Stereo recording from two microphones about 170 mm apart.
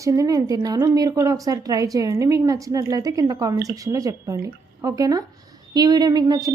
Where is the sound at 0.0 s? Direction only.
20° right (ahead or behind).